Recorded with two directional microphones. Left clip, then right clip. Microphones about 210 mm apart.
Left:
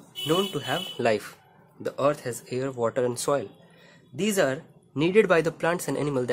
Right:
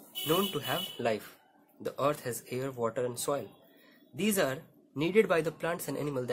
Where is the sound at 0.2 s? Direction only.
Centre (ahead or behind).